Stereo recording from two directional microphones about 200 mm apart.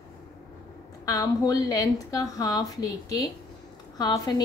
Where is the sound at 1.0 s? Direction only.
15° left (ahead or behind).